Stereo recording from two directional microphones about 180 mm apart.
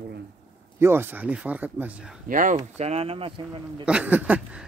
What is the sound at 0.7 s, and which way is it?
A man's voice, 15° right (ahead or behind).